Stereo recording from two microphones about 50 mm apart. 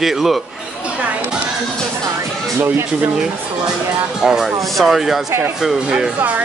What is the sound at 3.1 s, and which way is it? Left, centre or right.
Speech, centre.